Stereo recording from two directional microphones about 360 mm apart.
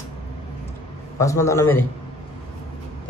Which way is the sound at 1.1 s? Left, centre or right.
Centre.